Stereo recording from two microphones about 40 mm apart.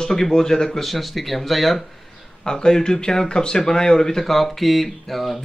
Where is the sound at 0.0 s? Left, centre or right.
Centre.